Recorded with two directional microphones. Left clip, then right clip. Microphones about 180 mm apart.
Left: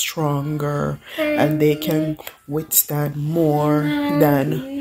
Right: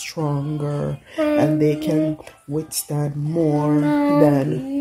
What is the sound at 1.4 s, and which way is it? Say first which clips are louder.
Speech: left 2 dB; 5° right (ahead or behind).